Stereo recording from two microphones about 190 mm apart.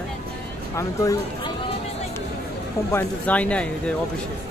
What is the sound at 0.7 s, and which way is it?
Speech, 15° left (ahead or behind).